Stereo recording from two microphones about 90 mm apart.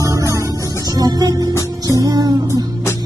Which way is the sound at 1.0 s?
45° right (ahead or behind).